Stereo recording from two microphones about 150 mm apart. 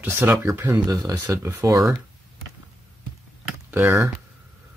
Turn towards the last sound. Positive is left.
turn(degrees=-15)  # may be behind; listen again after turning